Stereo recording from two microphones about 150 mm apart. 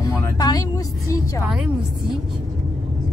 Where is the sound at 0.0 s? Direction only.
25° left (ahead or behind).